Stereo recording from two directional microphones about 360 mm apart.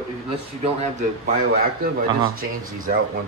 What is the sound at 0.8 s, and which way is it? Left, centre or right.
A man's voice, centre.